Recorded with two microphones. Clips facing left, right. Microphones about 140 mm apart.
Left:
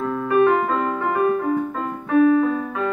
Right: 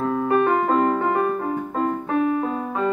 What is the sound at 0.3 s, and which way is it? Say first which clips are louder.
Music: left 3 dB; 35° right (ahead or behind).